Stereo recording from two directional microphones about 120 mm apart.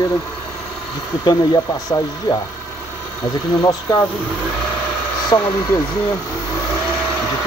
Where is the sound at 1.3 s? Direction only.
35° left (ahead or behind).